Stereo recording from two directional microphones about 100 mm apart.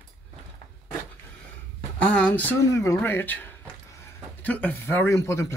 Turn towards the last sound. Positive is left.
turn(degrees=30)  # may be behind; listen again after turning